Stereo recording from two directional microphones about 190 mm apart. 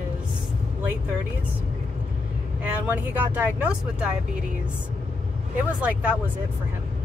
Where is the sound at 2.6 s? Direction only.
10° right (ahead or behind).